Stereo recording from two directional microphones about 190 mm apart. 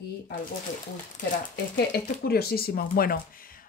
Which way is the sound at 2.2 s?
55° left (ahead or behind).